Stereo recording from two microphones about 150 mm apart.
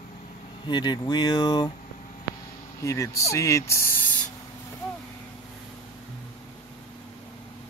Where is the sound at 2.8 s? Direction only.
20° left (ahead or behind).